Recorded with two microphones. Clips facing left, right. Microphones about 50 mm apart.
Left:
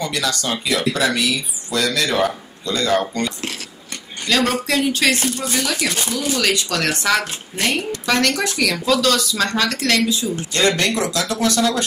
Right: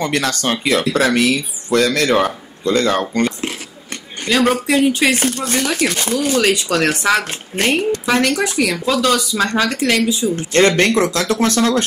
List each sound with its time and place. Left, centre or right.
0.0 s speech: right
4.3 s speech: centre
5.2 s speech: right
5.7 s speech: right
6.5 s speech: centre
10.5 s speech: right